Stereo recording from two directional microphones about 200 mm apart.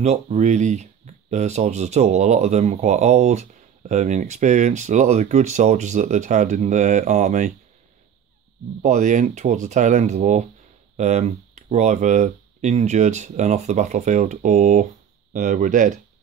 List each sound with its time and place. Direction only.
0.0 s speech: 35° right (ahead or behind)
8.8 s speech: 40° right (ahead or behind)